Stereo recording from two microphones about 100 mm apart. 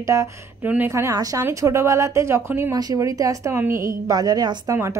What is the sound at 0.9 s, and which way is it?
A woman's voice, 35° right (ahead or behind).